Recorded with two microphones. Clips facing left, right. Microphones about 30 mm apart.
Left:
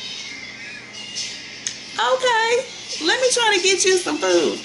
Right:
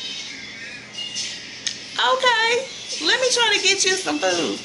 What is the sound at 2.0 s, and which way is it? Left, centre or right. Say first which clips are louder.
A woman's voice: even; centre.